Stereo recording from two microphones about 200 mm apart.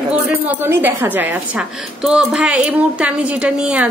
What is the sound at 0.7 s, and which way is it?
A woman's voice, 10° right (ahead or behind).